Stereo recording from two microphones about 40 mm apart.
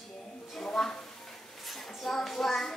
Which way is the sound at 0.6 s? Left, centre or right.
Centre.